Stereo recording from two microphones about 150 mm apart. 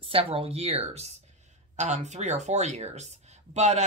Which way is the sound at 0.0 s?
40° right (ahead or behind).